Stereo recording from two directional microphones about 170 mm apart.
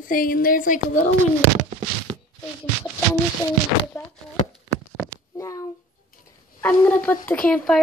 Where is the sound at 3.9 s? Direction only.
10° left (ahead or behind).